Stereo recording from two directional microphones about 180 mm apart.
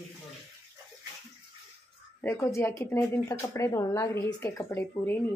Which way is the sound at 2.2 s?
15° left (ahead or behind).